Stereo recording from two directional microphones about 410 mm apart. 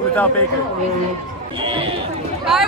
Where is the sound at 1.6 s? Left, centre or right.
Centre.